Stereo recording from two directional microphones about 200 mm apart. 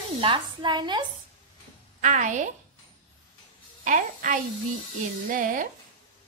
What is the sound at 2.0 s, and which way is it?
Speech, 40° right (ahead or behind).